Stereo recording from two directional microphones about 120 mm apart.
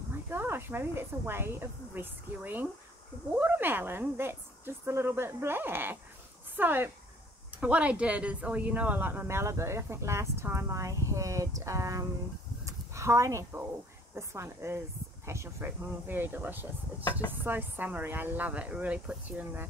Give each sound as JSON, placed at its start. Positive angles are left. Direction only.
{"t": 0.3, "sound": "a woman's voice", "side_deg": -20}
{"t": 12.6, "sound": "a sound", "side_deg": -25}
{"t": 14.1, "sound": "a woman's voice", "side_deg": -20}